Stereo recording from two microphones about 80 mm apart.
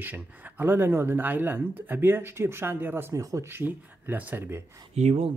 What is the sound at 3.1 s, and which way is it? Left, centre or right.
Speech, right.